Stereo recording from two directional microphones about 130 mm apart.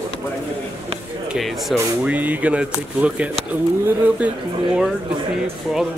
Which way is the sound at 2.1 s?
10° right (ahead or behind).